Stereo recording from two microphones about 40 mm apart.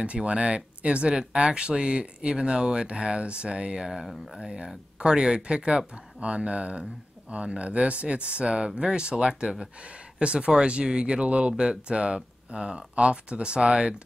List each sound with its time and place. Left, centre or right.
0.0 s speech: right
3.9 s speech: centre
4.4 s speech: right